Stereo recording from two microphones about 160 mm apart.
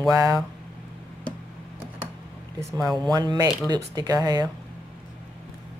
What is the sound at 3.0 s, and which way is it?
Speech, 25° right (ahead or behind).